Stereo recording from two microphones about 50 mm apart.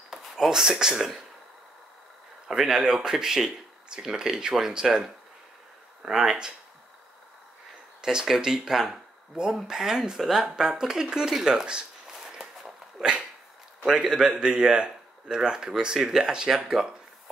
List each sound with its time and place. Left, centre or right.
0.1 s speech: centre
2.4 s speech: centre
8.0 s speech: centre
12.1 s dog: centre
13.9 s a man's voice: centre